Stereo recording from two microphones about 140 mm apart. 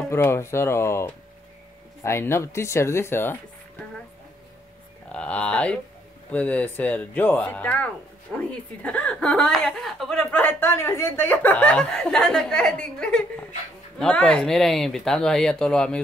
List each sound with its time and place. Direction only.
0.1 s speech: 20° left (ahead or behind)
5.1 s a woman's voice: 10° left (ahead or behind)